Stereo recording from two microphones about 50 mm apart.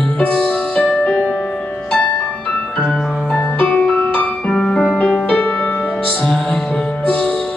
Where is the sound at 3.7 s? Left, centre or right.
Centre.